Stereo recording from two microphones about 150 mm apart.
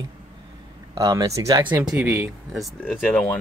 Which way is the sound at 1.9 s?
5° right (ahead or behind).